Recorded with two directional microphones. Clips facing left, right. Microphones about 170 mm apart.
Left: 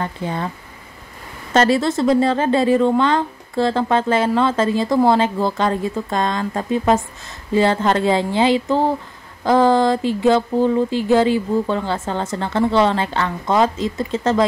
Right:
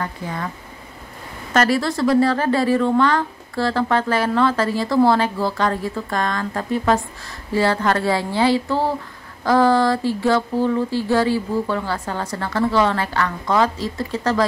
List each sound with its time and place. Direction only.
0.0 s speech: 25° left (ahead or behind)
1.5 s speech: 25° left (ahead or behind)